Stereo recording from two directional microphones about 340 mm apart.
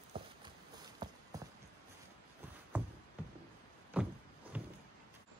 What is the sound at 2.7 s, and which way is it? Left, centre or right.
Music, centre.